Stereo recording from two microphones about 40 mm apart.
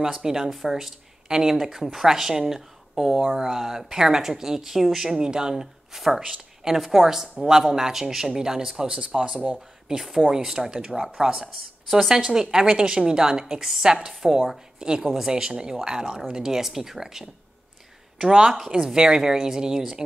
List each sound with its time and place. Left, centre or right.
0.0 s speech: centre
5.9 s speech: centre